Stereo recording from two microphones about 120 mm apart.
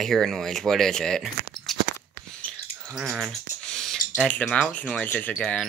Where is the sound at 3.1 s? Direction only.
5° left (ahead or behind).